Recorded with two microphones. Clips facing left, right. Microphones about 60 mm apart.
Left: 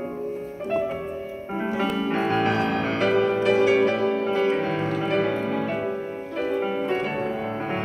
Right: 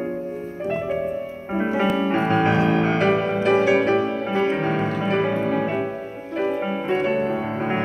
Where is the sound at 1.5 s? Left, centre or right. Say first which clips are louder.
Right 4 dB; right.